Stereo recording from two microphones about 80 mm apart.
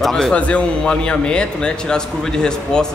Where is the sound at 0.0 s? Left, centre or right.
Centre.